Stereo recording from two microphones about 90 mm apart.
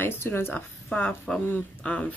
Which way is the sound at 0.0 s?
25° left (ahead or behind).